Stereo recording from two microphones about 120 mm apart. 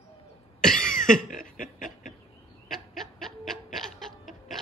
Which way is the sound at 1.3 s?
90° left.